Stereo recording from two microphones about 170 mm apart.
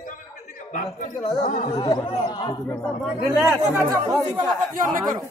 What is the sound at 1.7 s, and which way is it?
Speech, 25° left (ahead or behind).